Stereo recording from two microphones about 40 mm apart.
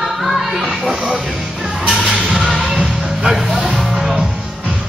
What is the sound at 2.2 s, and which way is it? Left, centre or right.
Music, right.